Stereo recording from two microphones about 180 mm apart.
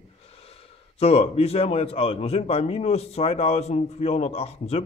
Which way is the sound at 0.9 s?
35° left (ahead or behind).